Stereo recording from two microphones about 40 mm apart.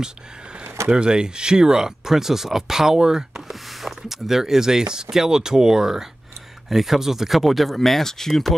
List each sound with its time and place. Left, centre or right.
0.0 s speech: right; by 8.5 s centre